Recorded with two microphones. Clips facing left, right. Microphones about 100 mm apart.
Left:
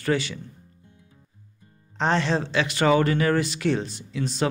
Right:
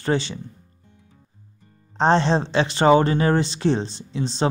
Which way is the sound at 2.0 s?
30° right (ahead or behind).